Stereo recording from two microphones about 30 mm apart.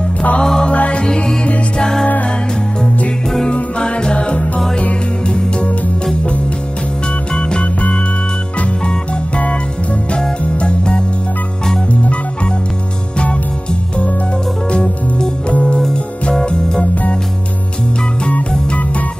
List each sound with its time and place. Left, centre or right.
0.7 s music: left
1.0 s music: left
3.8 s music: left
7.3 s music: left
10.6 s music: left
14.7 s music: left
16.4 s music: left